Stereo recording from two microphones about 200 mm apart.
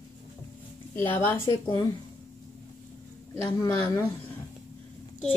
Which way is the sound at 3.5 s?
20° left (ahead or behind).